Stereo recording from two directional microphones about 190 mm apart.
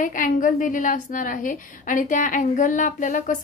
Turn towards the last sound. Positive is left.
turn(degrees=45)  # may be behind; listen again after turning